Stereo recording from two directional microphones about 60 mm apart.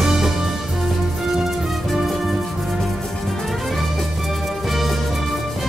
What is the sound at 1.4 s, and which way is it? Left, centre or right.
Music, centre.